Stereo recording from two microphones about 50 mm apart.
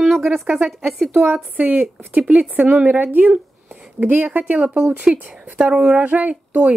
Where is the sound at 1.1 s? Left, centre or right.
Right.